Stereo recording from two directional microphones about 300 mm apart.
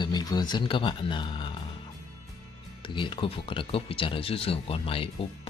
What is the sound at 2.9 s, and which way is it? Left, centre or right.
Speech, centre.